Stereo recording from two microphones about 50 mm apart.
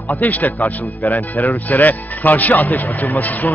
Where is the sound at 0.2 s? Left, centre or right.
Left.